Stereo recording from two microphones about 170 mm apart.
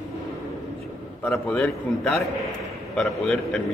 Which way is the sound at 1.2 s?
5° left (ahead or behind).